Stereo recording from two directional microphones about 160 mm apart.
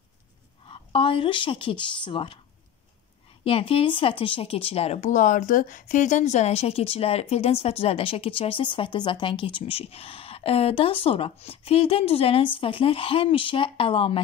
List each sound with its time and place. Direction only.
0.7 s speech: 35° left (ahead or behind)
3.4 s speech: 35° left (ahead or behind)